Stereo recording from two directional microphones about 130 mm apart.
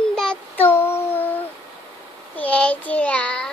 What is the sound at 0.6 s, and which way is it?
Child singing, 15° left (ahead or behind).